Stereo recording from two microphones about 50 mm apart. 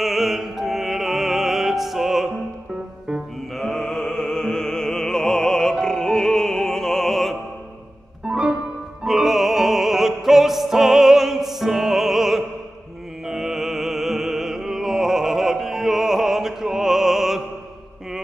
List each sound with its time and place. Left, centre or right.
0.0 s music: centre
3.5 s music: centre
8.2 s music: centre
9.0 s opera: centre
13.3 s music: centre